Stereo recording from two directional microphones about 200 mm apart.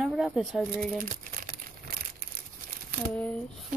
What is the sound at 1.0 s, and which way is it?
Crumpling, 45° right (ahead or behind).